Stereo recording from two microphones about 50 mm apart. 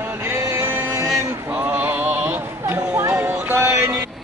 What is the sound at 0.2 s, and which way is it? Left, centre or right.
Music, right.